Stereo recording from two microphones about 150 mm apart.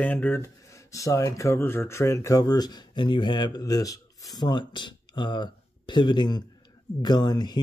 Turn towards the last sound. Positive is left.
turn(degrees=25)  # may be behind; listen again after turning